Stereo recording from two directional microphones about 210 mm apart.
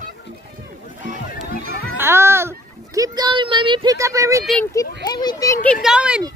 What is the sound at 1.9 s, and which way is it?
Speech, 10° right (ahead or behind).